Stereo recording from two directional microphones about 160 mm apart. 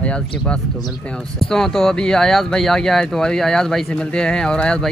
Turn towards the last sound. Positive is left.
turn(degrees=5)  # may be behind; listen again after turning